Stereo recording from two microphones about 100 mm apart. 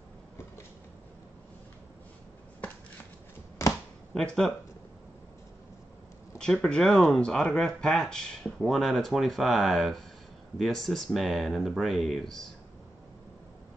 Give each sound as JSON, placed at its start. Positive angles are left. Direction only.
{"t": 3.6, "sound": "a sound", "side_deg": 30}
{"t": 4.1, "sound": "speech", "side_deg": 5}
{"t": 6.3, "sound": "speech", "side_deg": 5}